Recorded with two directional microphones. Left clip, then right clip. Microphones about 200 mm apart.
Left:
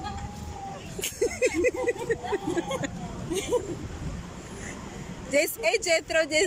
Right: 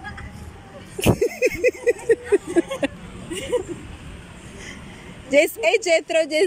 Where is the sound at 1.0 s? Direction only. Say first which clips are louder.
Right 7 dB; 15° right (ahead or behind).